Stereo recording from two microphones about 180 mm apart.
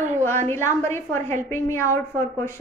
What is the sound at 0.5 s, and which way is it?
Speech, 15° left (ahead or behind).